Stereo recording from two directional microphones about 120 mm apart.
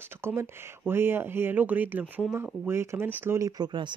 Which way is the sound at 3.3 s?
30° right (ahead or behind).